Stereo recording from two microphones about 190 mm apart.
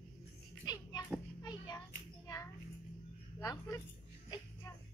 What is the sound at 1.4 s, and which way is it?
Hands, 20° left (ahead or behind).